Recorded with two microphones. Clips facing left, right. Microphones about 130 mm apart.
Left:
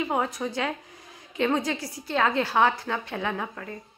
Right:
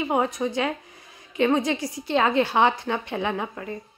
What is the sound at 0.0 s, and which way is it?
A woman's voice, 15° right (ahead or behind).